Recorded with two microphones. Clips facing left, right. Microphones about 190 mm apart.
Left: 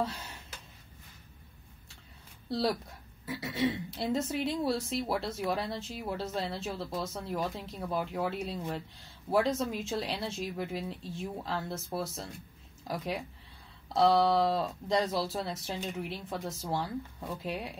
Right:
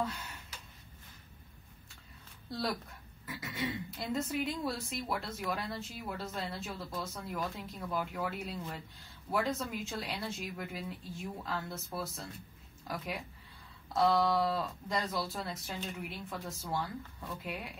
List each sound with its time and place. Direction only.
3.3 s a woman's voice: 30° left (ahead or behind)